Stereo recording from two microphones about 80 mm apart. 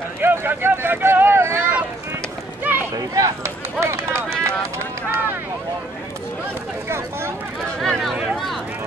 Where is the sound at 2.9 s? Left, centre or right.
Right.